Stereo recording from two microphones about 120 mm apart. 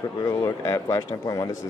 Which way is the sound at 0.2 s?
30° left (ahead or behind).